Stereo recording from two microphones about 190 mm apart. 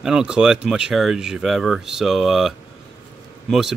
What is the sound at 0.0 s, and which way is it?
Speech, 5° right (ahead or behind).